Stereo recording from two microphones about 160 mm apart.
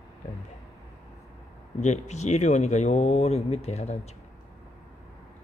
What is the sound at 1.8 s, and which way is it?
Speech, 45° left (ahead or behind).